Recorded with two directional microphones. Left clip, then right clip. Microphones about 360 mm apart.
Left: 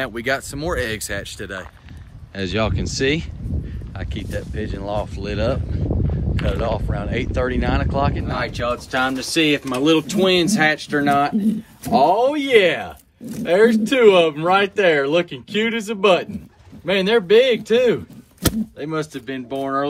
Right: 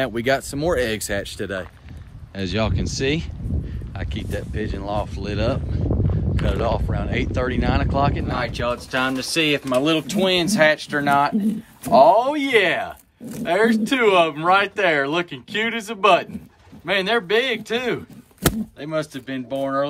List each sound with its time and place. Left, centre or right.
0.0 s speech: centre
5.9 s a sound: centre
6.3 s speech: centre